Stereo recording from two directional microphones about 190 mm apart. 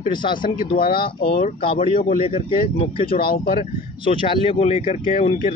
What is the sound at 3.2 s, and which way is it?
Speech, 50° left (ahead or behind).